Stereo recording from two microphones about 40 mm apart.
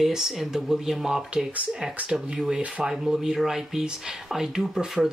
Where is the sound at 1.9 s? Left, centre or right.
Right; by 5.1 s centre.